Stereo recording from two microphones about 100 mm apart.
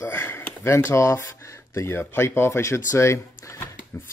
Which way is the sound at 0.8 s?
30° left (ahead or behind).